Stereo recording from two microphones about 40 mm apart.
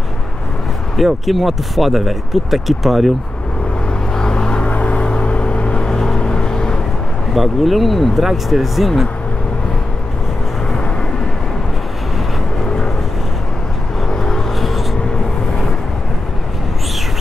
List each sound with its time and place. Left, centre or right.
0.9 s speech: centre
4.1 s a sound: centre
4.6 s vehicle: left
5.9 s vehicle: centre
7.3 s speech: centre
14.0 s vehicle: centre